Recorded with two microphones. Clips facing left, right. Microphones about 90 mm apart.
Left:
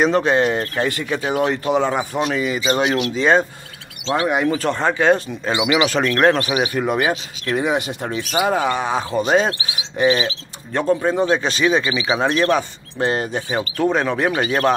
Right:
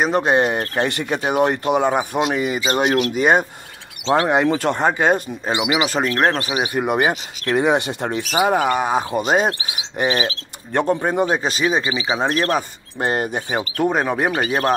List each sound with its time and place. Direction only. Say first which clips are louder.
0.1 s speech: even; 20° right (ahead or behind)
2.3 s speech: even; 40° right (ahead or behind)
3.2 s speech: left 1 dB; 15° right (ahead or behind)
4.0 s speech: right 2 dB; 30° right (ahead or behind)
5.0 s speech: left 2 dB; 20° right (ahead or behind)
5.6 s speech: left 3 dB; 5° right (ahead or behind)
6.7 s speech: even; 15° right (ahead or behind)
7.0 s speech: right 1 dB; 30° right (ahead or behind)
8.3 s speech: right 1 dB; 15° right (ahead or behind)
11.8 s speech: left 1 dB; 30° right (ahead or behind)
12.3 s speech: left 4 dB; 40° right (ahead or behind)
13.0 s speech: left 1 dB; 25° right (ahead or behind)
14.3 s speech: left 1 dB; 5° right (ahead or behind)